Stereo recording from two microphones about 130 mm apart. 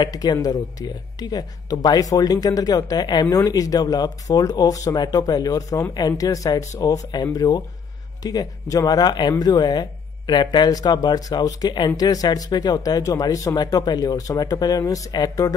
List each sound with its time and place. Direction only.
0.0 s speech: 30° left (ahead or behind)